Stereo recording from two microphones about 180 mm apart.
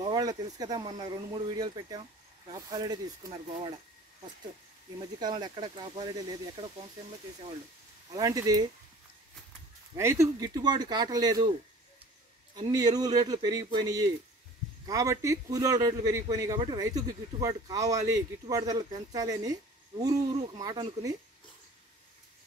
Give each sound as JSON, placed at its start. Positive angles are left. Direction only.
{"t": 0.0, "sound": "a man's voice", "side_deg": -20}
{"t": 5.2, "sound": "a man's voice", "side_deg": -25}
{"t": 8.1, "sound": "a man's voice", "side_deg": -20}
{"t": 9.9, "sound": "a man's voice", "side_deg": -15}
{"t": 12.5, "sound": "a man's voice", "side_deg": -20}